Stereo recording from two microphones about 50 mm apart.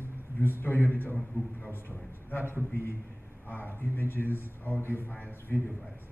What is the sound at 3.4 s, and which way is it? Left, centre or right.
A man's voice, left.